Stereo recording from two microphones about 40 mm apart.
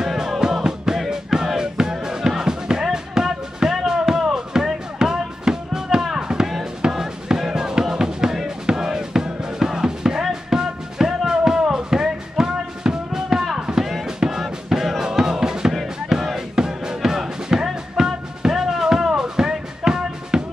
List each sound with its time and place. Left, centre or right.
0.0 s music: centre